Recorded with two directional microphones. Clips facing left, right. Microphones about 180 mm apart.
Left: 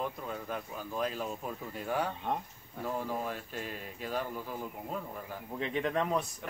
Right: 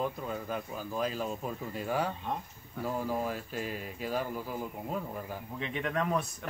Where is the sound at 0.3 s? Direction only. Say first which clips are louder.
Right 2 dB; 5° right (ahead or behind).